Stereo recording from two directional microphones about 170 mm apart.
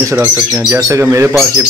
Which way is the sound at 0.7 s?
20° right (ahead or behind).